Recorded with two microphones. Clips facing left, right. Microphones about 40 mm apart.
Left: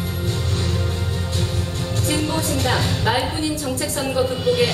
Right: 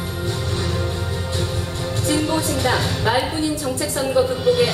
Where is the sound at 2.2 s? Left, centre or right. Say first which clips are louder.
Right 2 dB; centre.